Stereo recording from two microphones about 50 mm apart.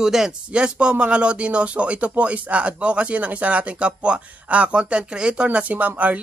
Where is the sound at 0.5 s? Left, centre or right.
Centre.